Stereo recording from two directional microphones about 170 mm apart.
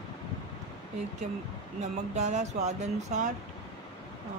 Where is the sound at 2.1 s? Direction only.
40° right (ahead or behind).